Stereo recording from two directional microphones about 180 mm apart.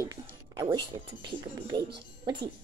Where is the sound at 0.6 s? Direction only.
25° right (ahead or behind).